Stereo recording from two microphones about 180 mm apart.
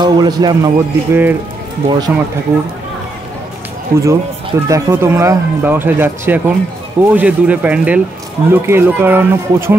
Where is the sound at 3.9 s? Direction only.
55° right (ahead or behind).